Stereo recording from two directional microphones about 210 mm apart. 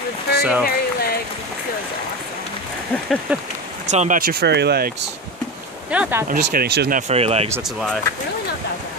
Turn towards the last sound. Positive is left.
turn(degrees=0)  # may be behind; listen again after turning